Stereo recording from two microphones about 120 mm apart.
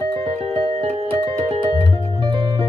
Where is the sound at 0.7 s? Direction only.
55° right (ahead or behind).